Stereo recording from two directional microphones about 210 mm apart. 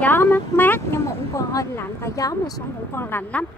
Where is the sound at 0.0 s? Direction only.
10° left (ahead or behind).